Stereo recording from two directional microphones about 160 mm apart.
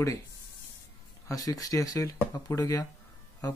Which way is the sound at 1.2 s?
20° left (ahead or behind).